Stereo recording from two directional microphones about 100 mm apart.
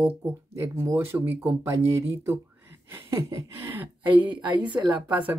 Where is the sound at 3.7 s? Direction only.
20° right (ahead or behind).